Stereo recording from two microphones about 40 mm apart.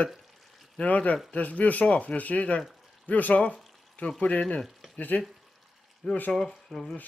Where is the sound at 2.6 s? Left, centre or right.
Centre.